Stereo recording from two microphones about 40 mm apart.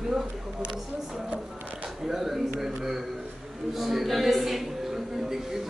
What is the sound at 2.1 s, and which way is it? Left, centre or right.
A man's voice, centre.